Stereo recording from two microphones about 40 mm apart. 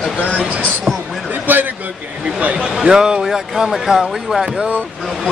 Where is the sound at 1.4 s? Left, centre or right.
Right.